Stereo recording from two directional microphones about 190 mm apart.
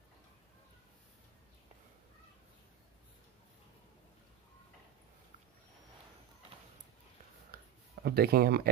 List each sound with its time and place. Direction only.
8.0 s speech: 55° right (ahead or behind)